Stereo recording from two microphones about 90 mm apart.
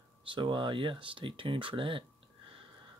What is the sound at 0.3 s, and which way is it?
Speech, 65° right (ahead or behind).